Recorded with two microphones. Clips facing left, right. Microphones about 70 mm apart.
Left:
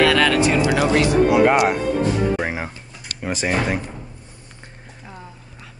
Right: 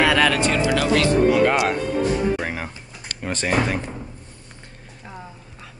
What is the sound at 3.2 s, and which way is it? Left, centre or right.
Speech, centre.